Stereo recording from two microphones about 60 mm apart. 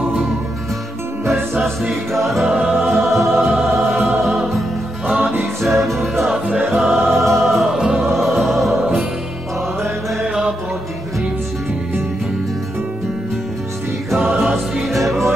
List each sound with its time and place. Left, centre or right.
1.6 s music: centre
2.5 s music: centre
2.8 s music: centre
3.6 s music: right
4.0 s music: centre
5.2 s music: right
5.6 s music: centre
6.3 s music: right
6.7 s music: centre
10.2 s music: centre
14.4 s music: centre